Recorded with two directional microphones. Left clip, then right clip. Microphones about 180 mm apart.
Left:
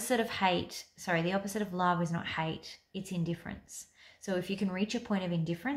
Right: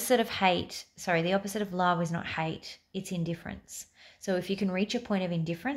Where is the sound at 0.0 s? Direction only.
40° right (ahead or behind).